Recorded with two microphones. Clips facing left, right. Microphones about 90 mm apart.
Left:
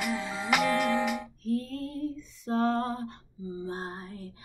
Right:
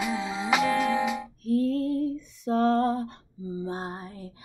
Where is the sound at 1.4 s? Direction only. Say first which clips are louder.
Right 7 dB; 65° right (ahead or behind).